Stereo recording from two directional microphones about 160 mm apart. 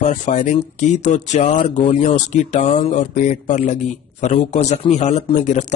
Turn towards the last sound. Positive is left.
turn(degrees=45)  # may be behind; listen again after turning